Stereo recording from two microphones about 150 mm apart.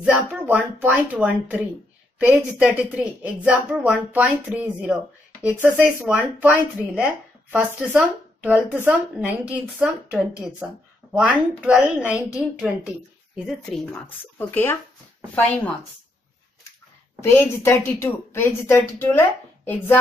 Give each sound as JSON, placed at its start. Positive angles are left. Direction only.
{"t": 0.0, "sound": "speech", "side_deg": -5}
{"t": 13.5, "sound": "a woman's voice", "side_deg": 5}
{"t": 17.2, "sound": "a woman's voice", "side_deg": 15}